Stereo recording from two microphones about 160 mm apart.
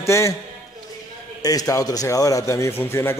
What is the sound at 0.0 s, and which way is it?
Speech, 20° left (ahead or behind).